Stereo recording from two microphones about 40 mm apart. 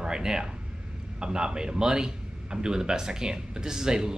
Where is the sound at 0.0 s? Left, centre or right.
Centre.